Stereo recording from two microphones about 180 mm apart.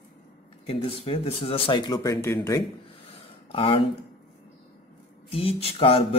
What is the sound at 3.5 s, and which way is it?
Speech, 30° left (ahead or behind).